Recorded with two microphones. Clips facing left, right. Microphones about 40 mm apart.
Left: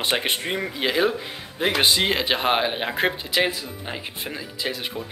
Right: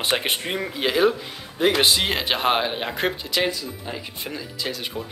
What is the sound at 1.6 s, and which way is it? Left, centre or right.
Speech, centre.